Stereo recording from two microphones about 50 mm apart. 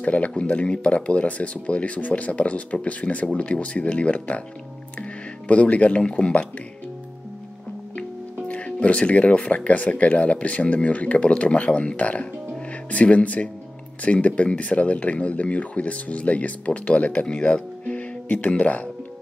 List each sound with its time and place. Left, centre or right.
0.0 s speech: left
5.5 s speech: left
8.5 s speech: left